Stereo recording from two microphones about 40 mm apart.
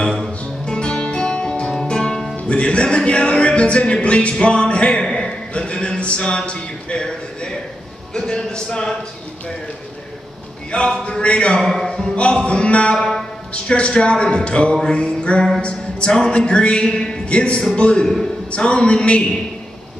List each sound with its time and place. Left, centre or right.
0.7 s guitar: left
2.3 s music: left
5.0 s a sound: centre
5.5 s speech: left
8.1 s music: centre
10.7 s music: left
11.6 s a man's voice: centre
12.2 s music: left
12.9 s music: centre
13.5 s music: left
15.6 s speech: left
16.2 s music: left